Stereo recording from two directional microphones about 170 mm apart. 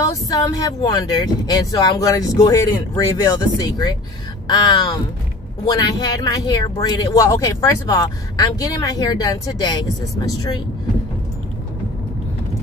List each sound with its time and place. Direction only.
0.0 s speech: 20° left (ahead or behind)